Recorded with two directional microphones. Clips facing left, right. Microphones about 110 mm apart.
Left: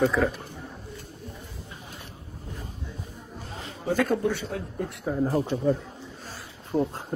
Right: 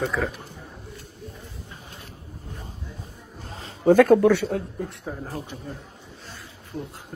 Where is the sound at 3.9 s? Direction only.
55° right (ahead or behind).